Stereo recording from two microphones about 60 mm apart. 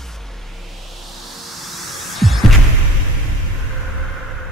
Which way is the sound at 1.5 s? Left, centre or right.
Centre.